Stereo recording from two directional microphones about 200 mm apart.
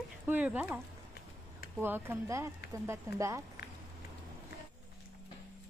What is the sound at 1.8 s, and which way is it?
Speech, 10° right (ahead or behind).